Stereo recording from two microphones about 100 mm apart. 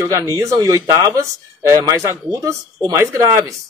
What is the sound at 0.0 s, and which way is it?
Speech, 35° right (ahead or behind).